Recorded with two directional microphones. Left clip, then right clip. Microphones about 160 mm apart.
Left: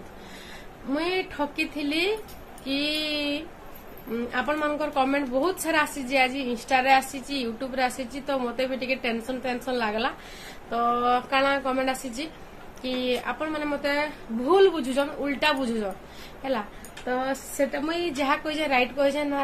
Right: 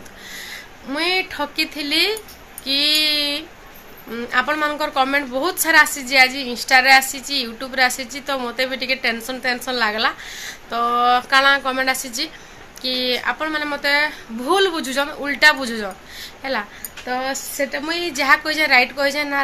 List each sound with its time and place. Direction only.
0.9 s a woman's voice: centre (ahead or behind)